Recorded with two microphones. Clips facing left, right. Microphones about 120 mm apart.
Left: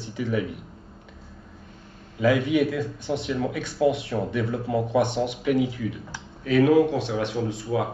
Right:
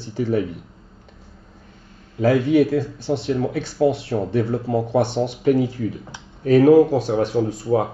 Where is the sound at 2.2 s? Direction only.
35° right (ahead or behind).